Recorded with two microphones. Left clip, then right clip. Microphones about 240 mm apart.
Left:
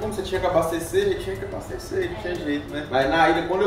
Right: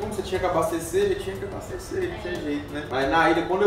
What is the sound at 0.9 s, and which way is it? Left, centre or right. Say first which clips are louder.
Speech: left 1 dB; centre.